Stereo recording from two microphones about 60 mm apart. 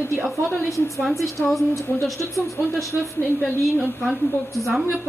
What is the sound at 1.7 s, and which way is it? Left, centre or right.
Speech, left.